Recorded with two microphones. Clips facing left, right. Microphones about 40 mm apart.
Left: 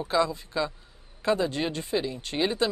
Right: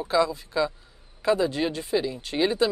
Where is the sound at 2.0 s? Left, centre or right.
Left.